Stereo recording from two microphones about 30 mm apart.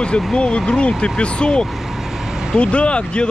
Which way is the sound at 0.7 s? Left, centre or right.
Left.